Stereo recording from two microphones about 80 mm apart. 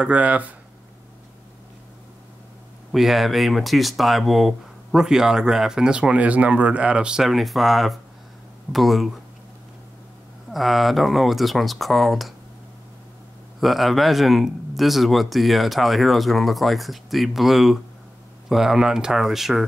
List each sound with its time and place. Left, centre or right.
0.0 s speech: centre
2.9 s speech: centre
10.5 s speech: centre
13.6 s speech: centre